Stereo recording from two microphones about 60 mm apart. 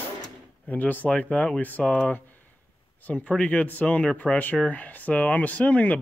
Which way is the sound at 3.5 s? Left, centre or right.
Left.